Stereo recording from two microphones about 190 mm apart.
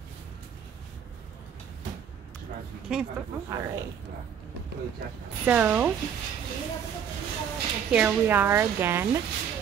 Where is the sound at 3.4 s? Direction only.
15° right (ahead or behind).